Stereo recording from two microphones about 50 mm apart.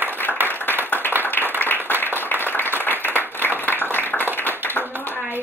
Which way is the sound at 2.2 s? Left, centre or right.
Left.